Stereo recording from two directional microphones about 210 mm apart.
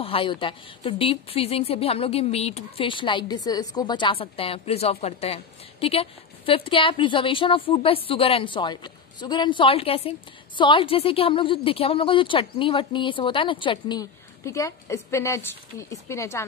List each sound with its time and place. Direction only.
0.0 s speech: 25° left (ahead or behind)